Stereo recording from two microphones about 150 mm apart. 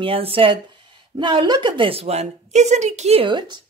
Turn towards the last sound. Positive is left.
turn(degrees=-30)  # may be behind; listen again after turning